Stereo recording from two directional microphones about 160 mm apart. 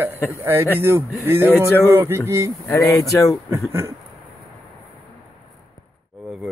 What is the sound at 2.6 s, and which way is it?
Speech, 15° left (ahead or behind).